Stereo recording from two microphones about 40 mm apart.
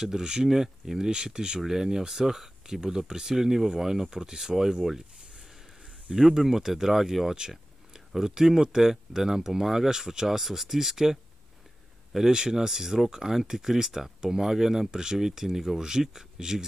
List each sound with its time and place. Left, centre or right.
0.0 s speech: centre
6.1 s speech: centre
12.3 s speech: centre